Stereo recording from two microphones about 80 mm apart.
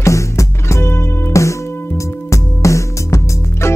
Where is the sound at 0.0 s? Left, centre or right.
Left.